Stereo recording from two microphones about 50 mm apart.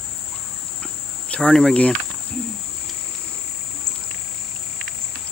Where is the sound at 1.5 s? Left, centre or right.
Centre.